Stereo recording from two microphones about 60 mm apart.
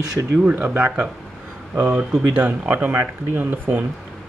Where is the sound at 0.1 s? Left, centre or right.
Right.